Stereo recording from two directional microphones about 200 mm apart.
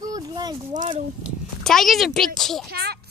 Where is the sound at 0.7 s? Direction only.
40° right (ahead or behind).